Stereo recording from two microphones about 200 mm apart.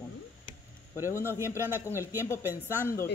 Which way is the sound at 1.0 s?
15° left (ahead or behind).